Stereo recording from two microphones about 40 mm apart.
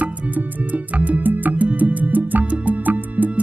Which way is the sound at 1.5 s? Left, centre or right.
Right.